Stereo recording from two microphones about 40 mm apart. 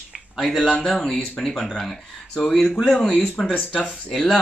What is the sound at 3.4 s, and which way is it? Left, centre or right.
Speech, centre.